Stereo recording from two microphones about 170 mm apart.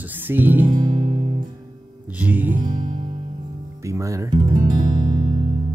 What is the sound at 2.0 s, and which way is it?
Speech, 10° right (ahead or behind).